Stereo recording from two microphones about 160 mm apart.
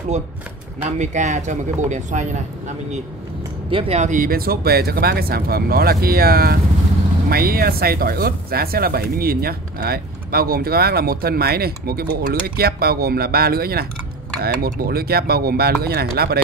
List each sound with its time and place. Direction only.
0.9 s speech: 45° right (ahead or behind)
3.7 s speech: 40° right (ahead or behind); by 16.3 s 80° right